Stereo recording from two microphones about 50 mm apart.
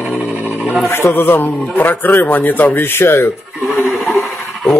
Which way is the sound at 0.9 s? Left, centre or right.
Left.